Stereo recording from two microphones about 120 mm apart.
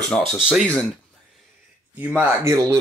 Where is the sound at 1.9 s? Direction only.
10° right (ahead or behind).